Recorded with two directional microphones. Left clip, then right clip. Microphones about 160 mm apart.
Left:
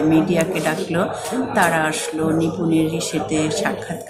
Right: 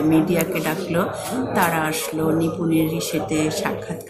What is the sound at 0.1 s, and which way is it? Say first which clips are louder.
A woman's voice: left 2 dB; 5° left (ahead or behind).